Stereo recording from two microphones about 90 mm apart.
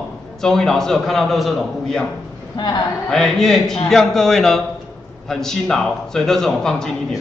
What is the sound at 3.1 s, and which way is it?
Chuckle, 5° left (ahead or behind).